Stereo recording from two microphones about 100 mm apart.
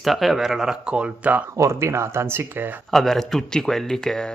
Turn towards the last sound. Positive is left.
turn(degrees=5)  # may be behind; listen again after turning